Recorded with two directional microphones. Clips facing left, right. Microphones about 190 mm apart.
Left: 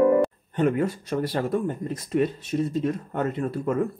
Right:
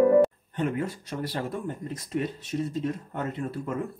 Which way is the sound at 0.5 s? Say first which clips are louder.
Left 6 dB; 55° left (ahead or behind).